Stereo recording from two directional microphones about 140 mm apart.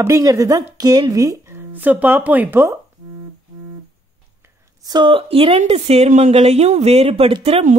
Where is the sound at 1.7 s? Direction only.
15° right (ahead or behind).